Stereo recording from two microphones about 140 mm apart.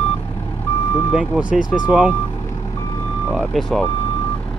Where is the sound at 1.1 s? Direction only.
5° right (ahead or behind).